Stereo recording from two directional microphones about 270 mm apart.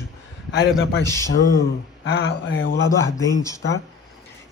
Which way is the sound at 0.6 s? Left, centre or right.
Left.